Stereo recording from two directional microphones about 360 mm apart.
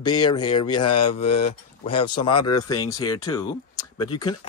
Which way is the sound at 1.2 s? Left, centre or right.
Left.